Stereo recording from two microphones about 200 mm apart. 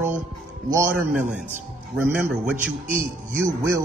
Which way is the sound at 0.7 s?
10° right (ahead or behind).